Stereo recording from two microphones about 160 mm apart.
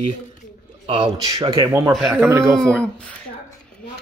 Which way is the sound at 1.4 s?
20° right (ahead or behind).